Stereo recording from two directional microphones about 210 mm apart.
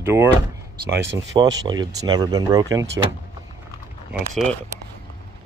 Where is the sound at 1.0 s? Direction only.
60° right (ahead or behind).